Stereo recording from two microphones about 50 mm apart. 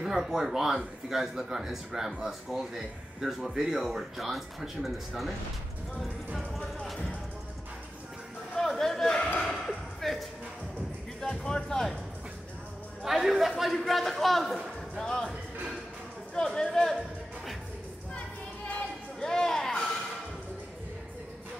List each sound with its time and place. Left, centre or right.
0.0 s speech: centre
8.5 s chatter: centre
9.4 s a sound: centre
11.1 s music: centre
13.0 s a man's voice: centre
16.3 s speech: centre
19.1 s a sound: centre